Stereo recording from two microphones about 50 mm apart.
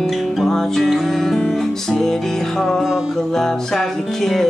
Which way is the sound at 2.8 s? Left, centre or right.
Centre.